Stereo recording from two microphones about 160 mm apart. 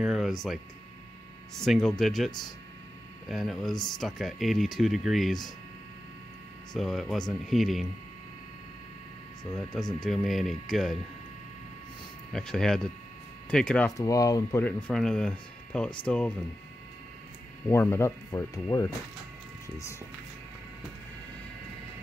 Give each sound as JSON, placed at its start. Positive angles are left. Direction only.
{"t": 0.0, "sound": "speech", "side_deg": -5}
{"t": 1.6, "sound": "speech", "side_deg": 0}
{"t": 6.7, "sound": "speech", "side_deg": 0}
{"t": 10.0, "sound": "speech", "side_deg": 0}
{"t": 12.3, "sound": "speech", "side_deg": 5}
{"t": 13.9, "sound": "speech", "side_deg": 20}
{"t": 14.6, "sound": "speech", "side_deg": 5}
{"t": 17.6, "sound": "speech", "side_deg": 15}